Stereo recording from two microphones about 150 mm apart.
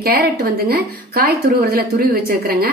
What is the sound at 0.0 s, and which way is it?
A woman's voice, 90° right.